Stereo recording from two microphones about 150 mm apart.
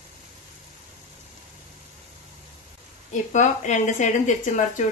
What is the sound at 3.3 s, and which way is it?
Speech, 55° left (ahead or behind).